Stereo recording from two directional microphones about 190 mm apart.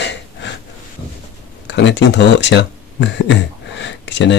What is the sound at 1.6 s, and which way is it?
Speech, 70° left (ahead or behind).